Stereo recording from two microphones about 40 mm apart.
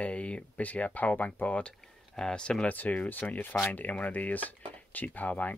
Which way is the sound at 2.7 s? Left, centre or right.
Left.